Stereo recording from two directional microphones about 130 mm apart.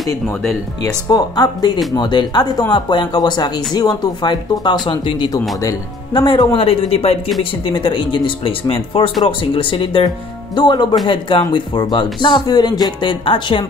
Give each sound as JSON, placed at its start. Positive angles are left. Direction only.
{"t": 0.1, "sound": "speech", "side_deg": 25}